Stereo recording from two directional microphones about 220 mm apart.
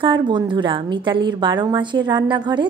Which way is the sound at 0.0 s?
20° right (ahead or behind).